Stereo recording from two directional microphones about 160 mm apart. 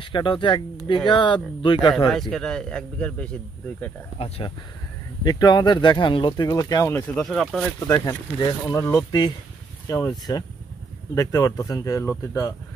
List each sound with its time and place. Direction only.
0.1 s speech: 30° left (ahead or behind)
2.0 s a man's voice: centre (ahead or behind)
5.2 s speech: 25° left (ahead or behind)
7.2 s a man's voice: centre (ahead or behind)
7.8 s speech: 20° left (ahead or behind)